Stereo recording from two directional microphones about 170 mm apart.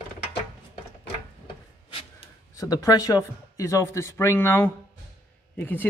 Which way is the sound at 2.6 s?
20° left (ahead or behind).